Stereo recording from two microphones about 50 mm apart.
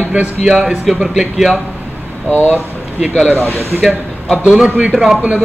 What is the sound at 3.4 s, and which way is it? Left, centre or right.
Speech, right.